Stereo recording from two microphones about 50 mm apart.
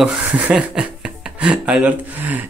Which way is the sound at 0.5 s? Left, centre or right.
Centre.